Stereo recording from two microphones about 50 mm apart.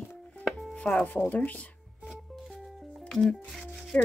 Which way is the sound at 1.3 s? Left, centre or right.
Left.